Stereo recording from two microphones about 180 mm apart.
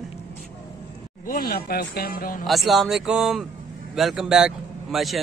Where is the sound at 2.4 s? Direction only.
Centre (ahead or behind).